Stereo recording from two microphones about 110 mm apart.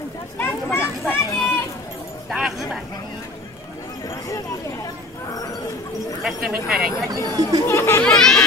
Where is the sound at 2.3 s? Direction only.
Centre (ahead or behind).